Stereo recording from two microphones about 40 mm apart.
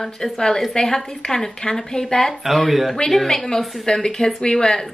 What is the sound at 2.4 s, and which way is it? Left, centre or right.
A woman's voice, centre.